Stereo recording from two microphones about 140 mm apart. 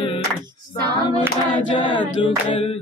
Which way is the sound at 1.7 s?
35° left (ahead or behind).